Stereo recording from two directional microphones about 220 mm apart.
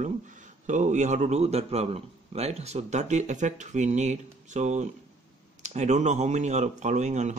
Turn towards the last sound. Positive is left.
turn(degrees=-30)  # may be behind; listen again after turning